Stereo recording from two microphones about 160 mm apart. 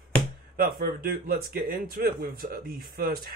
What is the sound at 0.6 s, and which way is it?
Speech, 65° right (ahead or behind).